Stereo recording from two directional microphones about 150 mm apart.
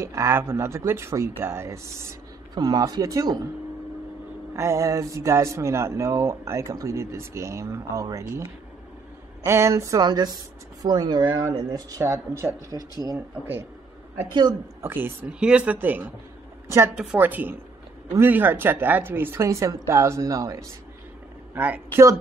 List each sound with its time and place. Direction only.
0.0 s speech: 20° right (ahead or behind)
4.6 s speech: 20° right (ahead or behind)
14.8 s a woman's voice: 15° right (ahead or behind)
21.5 s speech: 10° right (ahead or behind)